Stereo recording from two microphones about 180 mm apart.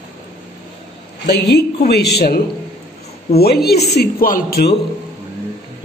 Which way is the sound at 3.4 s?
60° left (ahead or behind).